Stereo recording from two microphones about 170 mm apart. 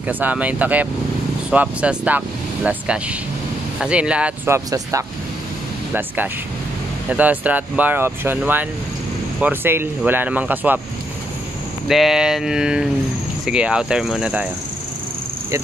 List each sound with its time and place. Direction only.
0.1 s speech: 10° right (ahead or behind)
4.6 s speech: 20° right (ahead or behind)
11.9 s speech: centre (ahead or behind)